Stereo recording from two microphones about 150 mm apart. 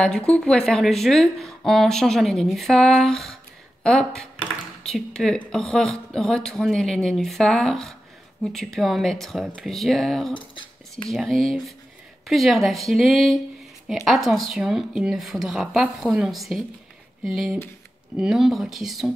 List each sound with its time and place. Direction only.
0.0 s speech: 5° left (ahead or behind)
10.3 s a sound: 35° left (ahead or behind)
11.1 s speech: centre (ahead or behind)